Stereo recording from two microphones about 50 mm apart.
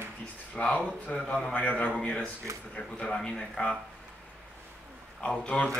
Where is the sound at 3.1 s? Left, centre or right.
Centre.